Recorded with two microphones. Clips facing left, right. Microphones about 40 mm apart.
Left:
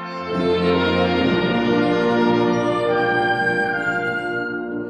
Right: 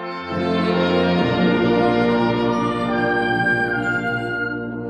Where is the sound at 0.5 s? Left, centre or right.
Left.